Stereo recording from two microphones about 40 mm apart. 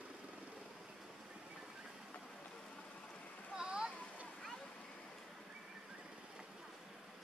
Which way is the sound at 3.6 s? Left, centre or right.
Centre.